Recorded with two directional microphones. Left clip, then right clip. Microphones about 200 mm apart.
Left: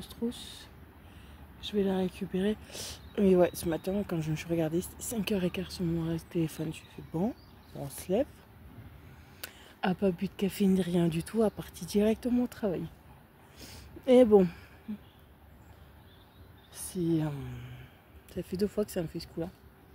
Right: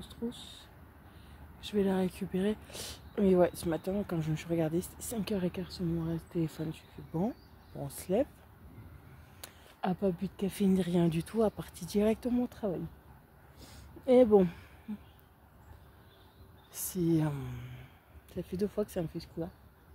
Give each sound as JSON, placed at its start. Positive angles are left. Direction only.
{"t": 0.0, "sound": "speech", "side_deg": 20}
{"t": 1.6, "sound": "speech", "side_deg": -5}
{"t": 9.4, "sound": "speech", "side_deg": 10}
{"t": 16.7, "sound": "speech", "side_deg": -15}